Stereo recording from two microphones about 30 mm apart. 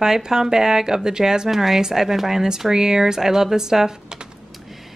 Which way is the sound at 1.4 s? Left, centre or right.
Centre.